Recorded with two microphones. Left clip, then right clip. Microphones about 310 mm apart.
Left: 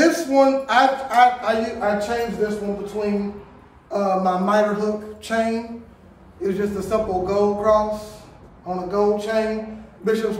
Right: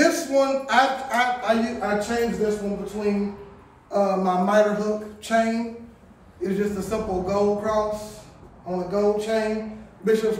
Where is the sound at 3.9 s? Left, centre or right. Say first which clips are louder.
Left 2 dB; centre.